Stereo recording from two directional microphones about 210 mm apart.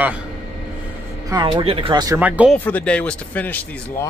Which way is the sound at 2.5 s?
5° left (ahead or behind).